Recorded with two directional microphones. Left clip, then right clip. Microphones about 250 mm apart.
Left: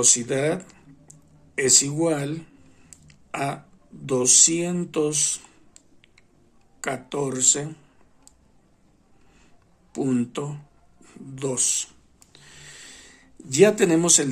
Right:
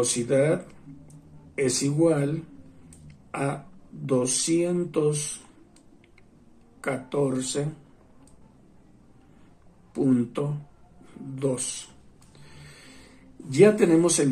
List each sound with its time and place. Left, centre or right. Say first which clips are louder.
0.0 s speech: left 1 dB; left
3.1 s a sound: left 2 dB; left
4.0 s speech: left 6 dB; left
6.8 s speech: right 1 dB; left
9.9 s speech: right 1 dB; left
13.6 s speech: left 1 dB; left